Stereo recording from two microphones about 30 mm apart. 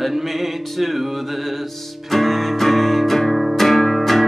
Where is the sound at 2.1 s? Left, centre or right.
Centre.